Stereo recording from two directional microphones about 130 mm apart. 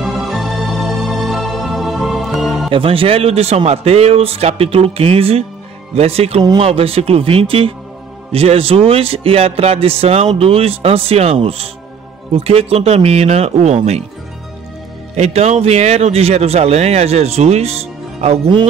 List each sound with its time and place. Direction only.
0.0 s music: centre (ahead or behind)
2.7 s a man's voice: 45° right (ahead or behind)
15.1 s a man's voice: 55° right (ahead or behind)